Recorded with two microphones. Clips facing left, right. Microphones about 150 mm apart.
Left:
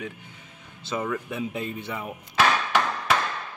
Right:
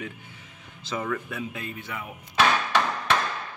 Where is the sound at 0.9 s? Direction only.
15° left (ahead or behind).